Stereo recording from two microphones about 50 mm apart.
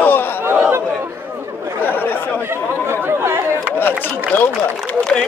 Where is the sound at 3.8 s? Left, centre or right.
Left.